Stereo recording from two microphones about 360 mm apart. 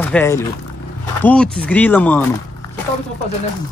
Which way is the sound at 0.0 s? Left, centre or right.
Centre.